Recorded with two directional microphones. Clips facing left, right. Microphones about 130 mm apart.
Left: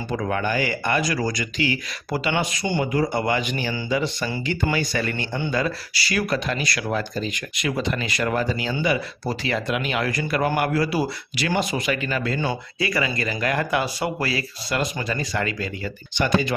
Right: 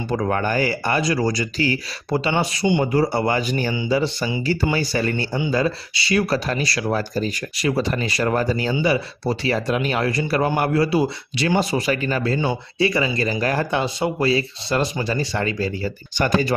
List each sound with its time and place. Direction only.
0.1 s speech: 40° right (ahead or behind)
2.0 s speech: 25° right (ahead or behind)
2.8 s speech: 35° right (ahead or behind)
8.8 s speech: 30° right (ahead or behind)